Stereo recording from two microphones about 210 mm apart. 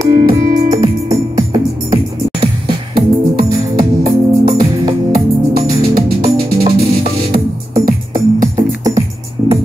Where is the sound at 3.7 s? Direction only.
15° right (ahead or behind).